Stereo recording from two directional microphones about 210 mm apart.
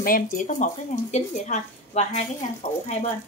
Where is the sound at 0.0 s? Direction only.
40° left (ahead or behind).